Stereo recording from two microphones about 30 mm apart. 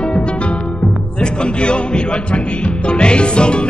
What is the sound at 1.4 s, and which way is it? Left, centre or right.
Music, left.